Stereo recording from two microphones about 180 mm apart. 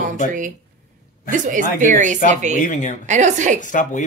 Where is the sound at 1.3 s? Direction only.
45° right (ahead or behind).